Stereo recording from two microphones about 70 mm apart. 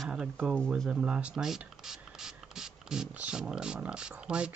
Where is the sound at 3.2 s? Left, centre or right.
Centre.